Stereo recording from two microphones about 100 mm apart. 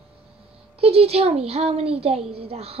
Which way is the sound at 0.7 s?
90° right.